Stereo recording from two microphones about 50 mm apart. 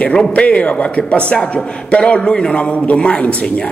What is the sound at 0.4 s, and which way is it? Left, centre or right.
Speech, left.